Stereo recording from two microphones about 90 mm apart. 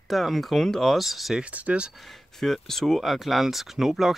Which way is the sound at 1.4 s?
15° right (ahead or behind).